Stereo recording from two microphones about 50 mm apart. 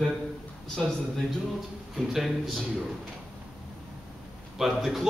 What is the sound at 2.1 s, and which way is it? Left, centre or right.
Speech, centre.